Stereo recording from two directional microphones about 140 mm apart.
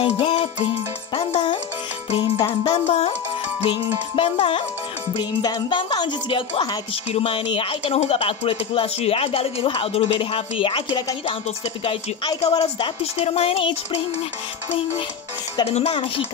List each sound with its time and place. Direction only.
0.0 s music: 45° left (ahead or behind)
1.1 s speech: 45° left (ahead or behind)
2.0 s music: 45° left (ahead or behind)
2.6 s speech: 45° left (ahead or behind); by 11.1 s 30° left (ahead or behind)
11.2 s speech: 40° left (ahead or behind)
15.6 s speech: 45° left (ahead or behind)